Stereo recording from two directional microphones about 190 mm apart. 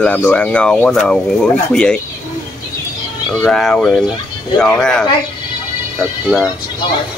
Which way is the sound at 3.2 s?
5° left (ahead or behind).